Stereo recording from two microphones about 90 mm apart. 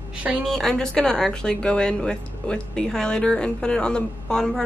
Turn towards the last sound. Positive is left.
turn(degrees=5)  # may be behind; listen again after turning